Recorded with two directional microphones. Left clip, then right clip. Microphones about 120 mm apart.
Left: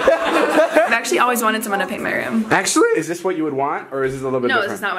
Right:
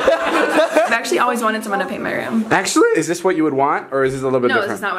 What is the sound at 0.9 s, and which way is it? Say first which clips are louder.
Speech: even; 5° left (ahead or behind).